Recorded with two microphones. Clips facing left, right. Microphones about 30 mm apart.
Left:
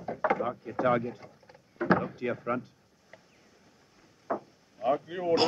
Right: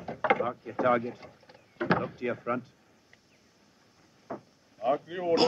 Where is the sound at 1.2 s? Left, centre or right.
Right.